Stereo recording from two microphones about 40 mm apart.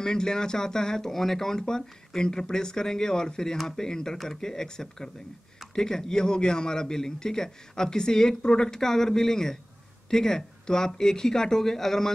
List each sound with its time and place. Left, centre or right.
0.0 s a man's voice: centre